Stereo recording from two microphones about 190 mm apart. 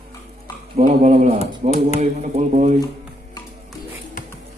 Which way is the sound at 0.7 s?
40° right (ahead or behind).